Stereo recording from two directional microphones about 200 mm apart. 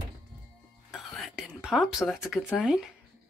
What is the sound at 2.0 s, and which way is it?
Speech, centre (ahead or behind).